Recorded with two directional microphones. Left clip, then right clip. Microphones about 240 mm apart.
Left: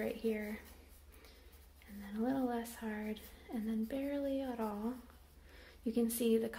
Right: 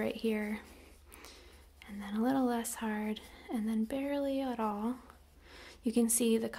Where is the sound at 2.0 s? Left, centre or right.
Right.